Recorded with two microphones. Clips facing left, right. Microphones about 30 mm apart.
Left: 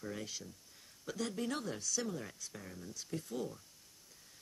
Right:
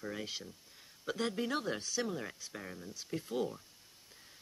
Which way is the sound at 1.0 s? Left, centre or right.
Right.